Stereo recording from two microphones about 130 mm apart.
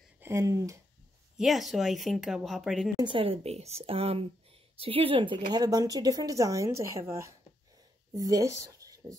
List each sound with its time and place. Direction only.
0.2 s speech: 25° right (ahead or behind)
1.4 s a woman's voice: centre (ahead or behind)
3.0 s a woman's voice: 40° right (ahead or behind)